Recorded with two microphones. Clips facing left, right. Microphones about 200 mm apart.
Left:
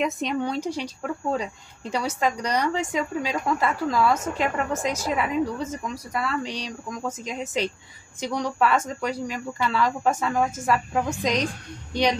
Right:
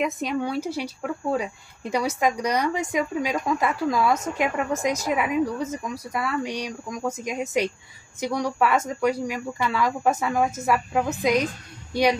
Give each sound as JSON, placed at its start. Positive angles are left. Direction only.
{"t": 0.0, "sound": "a woman's voice", "side_deg": -5}